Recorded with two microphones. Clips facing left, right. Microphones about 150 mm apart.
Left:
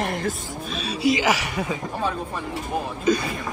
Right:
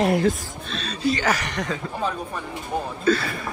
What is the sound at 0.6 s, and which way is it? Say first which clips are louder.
Speech: left 2 dB; 5° left (ahead or behind).